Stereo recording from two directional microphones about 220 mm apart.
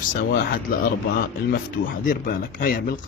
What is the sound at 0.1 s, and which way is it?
Speech, 45° left (ahead or behind).